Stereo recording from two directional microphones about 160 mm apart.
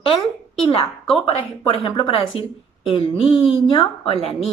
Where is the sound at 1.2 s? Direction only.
40° left (ahead or behind).